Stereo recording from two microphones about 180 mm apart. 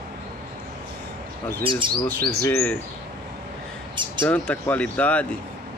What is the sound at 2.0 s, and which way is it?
Speech, 10° left (ahead or behind).